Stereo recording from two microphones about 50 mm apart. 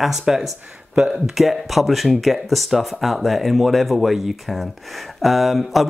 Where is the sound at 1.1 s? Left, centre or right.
Centre.